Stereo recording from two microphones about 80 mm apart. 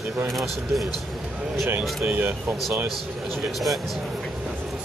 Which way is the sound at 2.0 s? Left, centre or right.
Right.